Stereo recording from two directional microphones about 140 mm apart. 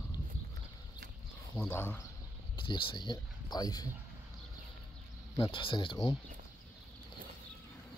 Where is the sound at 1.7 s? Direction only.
15° left (ahead or behind).